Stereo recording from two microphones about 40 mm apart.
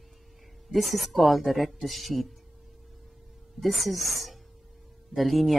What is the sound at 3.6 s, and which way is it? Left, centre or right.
Speech, centre.